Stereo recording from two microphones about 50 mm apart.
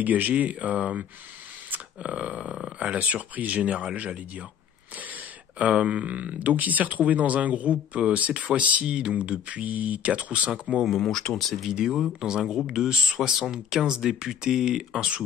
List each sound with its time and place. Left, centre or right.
0.0 s speech: right
2.0 s speech: right
8.8 s speech: centre
10.9 s speech: centre
11.7 s speech: centre